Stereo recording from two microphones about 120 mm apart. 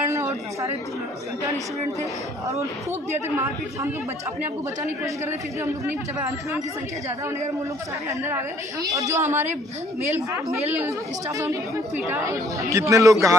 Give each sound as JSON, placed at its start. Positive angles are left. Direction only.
{"t": 0.1, "sound": "a sound", "side_deg": -25}
{"t": 5.7, "sound": "speech", "side_deg": -25}
{"t": 8.1, "sound": "speech", "side_deg": -20}
{"t": 11.3, "sound": "speech", "side_deg": -25}